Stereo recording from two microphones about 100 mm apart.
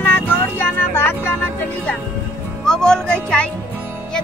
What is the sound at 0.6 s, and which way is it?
Vehicle, 20° left (ahead or behind).